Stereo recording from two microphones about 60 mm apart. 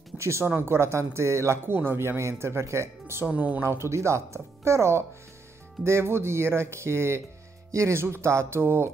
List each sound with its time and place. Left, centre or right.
0.2 s speech: right
1.7 s speech: right
3.3 s speech: right
3.6 s speech: right